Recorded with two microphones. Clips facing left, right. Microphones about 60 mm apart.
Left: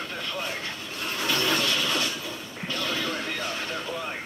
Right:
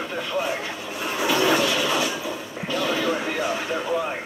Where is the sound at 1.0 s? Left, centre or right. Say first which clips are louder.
Right 6 dB; centre.